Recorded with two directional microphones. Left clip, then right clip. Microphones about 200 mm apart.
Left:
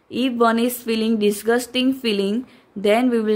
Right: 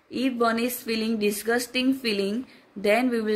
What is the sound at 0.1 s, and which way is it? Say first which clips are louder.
A woman's voice: left 6 dB; 50° left (ahead or behind).